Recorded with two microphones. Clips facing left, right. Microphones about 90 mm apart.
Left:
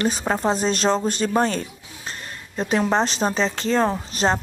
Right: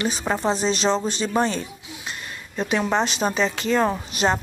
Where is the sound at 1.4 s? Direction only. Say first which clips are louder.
Left 1 dB; 40° left (ahead or behind).